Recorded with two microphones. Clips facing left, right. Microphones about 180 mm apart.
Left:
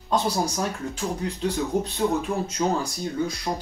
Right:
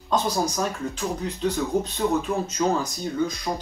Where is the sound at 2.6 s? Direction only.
20° left (ahead or behind).